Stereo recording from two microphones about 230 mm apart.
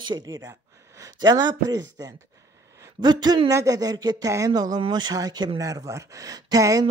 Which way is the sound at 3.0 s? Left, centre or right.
Centre.